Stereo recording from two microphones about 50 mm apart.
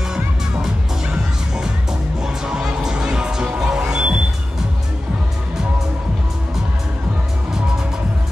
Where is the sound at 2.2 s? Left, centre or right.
Centre.